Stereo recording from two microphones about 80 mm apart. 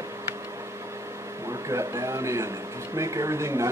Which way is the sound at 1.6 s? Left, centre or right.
Right.